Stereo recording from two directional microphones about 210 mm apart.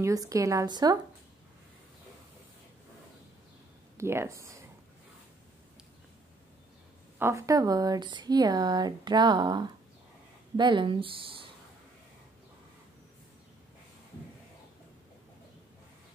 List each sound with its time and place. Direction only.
0.0 s a woman's voice: 15° right (ahead or behind)
4.0 s a woman's voice: 10° right (ahead or behind)
7.2 s speech: 10° right (ahead or behind)